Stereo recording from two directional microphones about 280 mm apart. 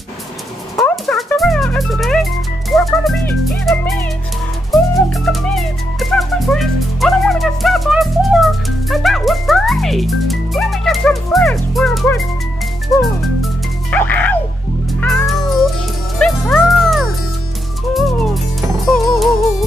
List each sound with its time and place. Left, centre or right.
0.7 s music: centre
2.7 s speech: centre
4.6 s music: centre
15.0 s cat: centre
16.2 s music: centre